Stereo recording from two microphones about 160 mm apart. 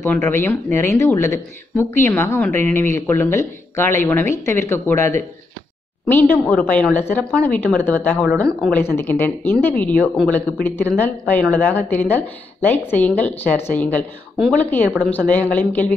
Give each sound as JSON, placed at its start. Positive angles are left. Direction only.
{"t": 0.0, "sound": "speech", "side_deg": 15}